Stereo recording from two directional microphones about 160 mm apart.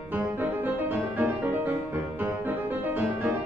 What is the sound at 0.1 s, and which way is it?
Music, 10° right (ahead or behind).